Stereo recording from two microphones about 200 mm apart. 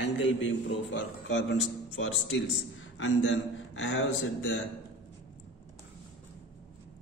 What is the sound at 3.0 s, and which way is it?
A man's voice, 70° left (ahead or behind).